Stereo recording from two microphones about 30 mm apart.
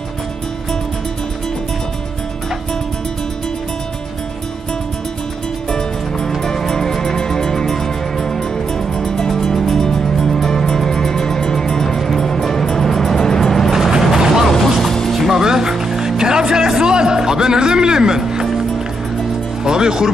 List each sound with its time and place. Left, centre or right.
5.7 s music: left
13.4 s vehicle: centre
13.7 s vehicle: centre
14.1 s vehicle: centre
14.5 s music: centre
15.1 s music: centre
15.4 s vehicle: right
15.7 s music: centre
16.2 s music: right
19.6 s music: right